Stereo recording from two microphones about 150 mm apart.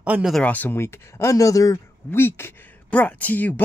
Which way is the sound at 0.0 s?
10° right (ahead or behind).